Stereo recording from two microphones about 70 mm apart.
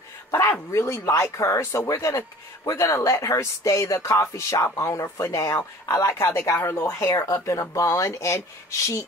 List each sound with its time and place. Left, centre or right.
0.3 s speech: left
6.9 s speech: left